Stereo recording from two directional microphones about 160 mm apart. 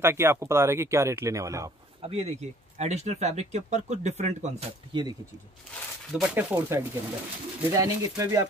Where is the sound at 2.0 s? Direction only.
40° right (ahead or behind).